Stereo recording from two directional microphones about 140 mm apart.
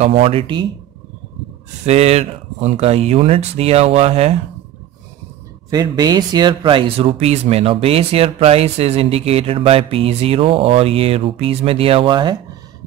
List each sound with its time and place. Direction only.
0.1 s speech: 40° right (ahead or behind)
1.9 s speech: 50° right (ahead or behind)
5.7 s speech: 25° right (ahead or behind)